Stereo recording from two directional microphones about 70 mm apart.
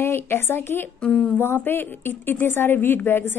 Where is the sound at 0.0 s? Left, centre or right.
Left.